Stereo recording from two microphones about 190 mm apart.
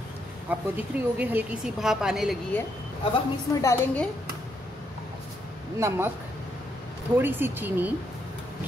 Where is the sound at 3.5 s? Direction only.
15° left (ahead or behind).